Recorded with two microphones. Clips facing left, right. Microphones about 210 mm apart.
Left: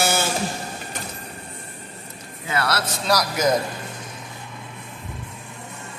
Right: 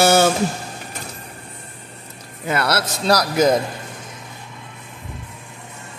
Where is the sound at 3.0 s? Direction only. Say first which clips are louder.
Right 5 dB; 30° right (ahead or behind).